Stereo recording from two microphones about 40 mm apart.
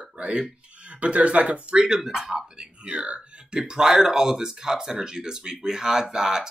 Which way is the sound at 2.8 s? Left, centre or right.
Right.